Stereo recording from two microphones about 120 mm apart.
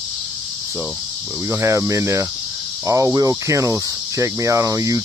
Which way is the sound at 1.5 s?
25° right (ahead or behind).